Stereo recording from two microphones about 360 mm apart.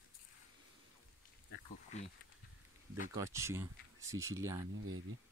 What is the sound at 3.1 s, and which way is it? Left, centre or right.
Speech, centre.